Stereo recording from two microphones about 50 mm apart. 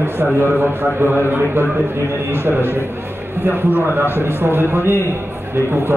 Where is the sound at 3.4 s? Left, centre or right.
Right.